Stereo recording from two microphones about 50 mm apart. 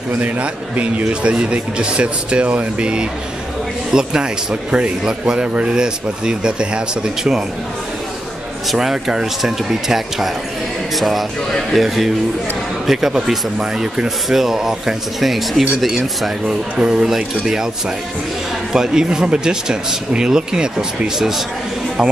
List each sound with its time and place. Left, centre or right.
0.2 s speech: right; by 7.4 s centre
8.6 s speech: centre
16.7 s speech: centre